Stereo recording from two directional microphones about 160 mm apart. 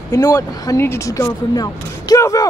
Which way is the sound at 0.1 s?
20° left (ahead or behind).